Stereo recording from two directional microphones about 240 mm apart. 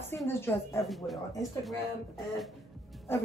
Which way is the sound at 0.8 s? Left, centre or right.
Centre.